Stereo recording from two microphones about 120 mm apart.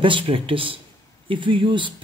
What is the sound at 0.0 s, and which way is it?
Speech, 45° right (ahead or behind).